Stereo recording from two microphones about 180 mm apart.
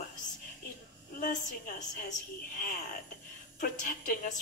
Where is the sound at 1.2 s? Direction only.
45° left (ahead or behind).